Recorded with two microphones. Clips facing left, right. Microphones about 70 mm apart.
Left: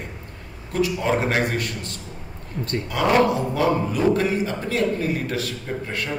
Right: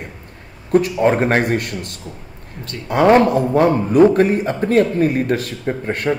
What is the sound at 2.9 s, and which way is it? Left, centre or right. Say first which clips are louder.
A man's voice: right 7 dB; right.